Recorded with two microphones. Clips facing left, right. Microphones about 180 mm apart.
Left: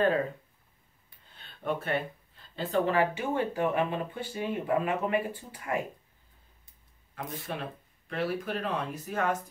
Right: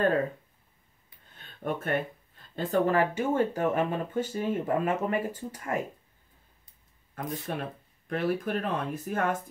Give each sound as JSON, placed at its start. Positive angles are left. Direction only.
{"t": 1.3, "sound": "a sound", "side_deg": -45}
{"t": 2.5, "sound": "speech", "side_deg": -45}
{"t": 7.2, "sound": "speech", "side_deg": -45}